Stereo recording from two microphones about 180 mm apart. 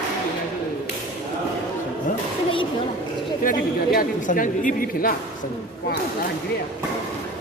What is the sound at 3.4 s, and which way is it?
A woman's voice, 50° left (ahead or behind).